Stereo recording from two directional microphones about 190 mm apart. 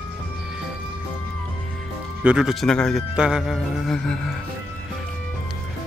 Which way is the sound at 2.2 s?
5° right (ahead or behind).